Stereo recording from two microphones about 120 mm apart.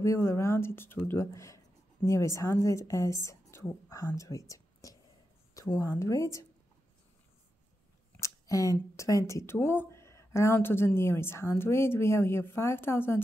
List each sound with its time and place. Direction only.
0.0 s a woman's voice: 25° left (ahead or behind)
8.2 s a woman's voice: 30° left (ahead or behind)